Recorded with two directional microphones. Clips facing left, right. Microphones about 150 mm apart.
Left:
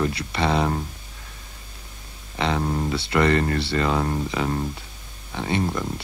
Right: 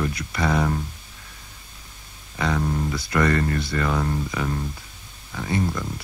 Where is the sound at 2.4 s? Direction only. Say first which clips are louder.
Left 1 dB; 25° left (ahead or behind).